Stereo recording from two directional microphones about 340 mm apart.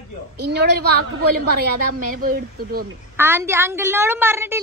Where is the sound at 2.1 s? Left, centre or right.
Right.